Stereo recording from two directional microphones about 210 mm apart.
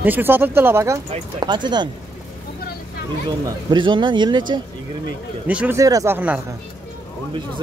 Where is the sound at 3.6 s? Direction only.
20° right (ahead or behind).